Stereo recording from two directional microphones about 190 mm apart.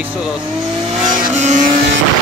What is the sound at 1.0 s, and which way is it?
Vehicle, 45° right (ahead or behind).